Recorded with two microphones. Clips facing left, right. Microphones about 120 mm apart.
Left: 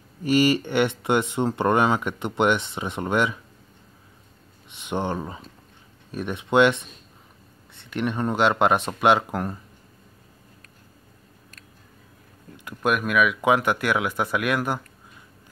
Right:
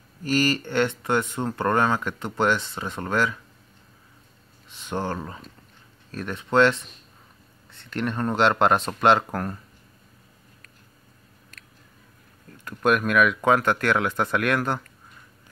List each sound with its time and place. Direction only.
0.2 s speech: 15° left (ahead or behind)
4.7 s speech: 20° left (ahead or behind)
12.6 s speech: 5° left (ahead or behind)